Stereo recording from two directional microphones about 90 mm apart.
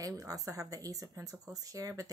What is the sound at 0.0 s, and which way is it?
Speech, 40° right (ahead or behind).